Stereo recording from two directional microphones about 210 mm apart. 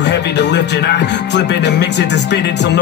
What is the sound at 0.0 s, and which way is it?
Music, 55° left (ahead or behind).